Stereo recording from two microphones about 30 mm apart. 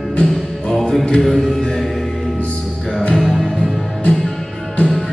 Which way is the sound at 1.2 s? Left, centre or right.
Left.